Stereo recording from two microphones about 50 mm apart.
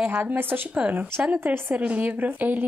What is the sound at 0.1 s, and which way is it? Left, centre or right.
Speech, right.